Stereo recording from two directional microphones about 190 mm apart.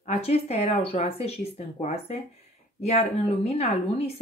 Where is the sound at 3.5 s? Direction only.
35° left (ahead or behind).